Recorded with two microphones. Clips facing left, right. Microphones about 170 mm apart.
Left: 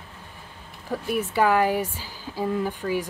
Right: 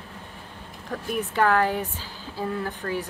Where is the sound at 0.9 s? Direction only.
10° left (ahead or behind).